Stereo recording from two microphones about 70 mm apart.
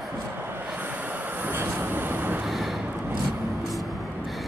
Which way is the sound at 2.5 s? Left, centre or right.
Centre.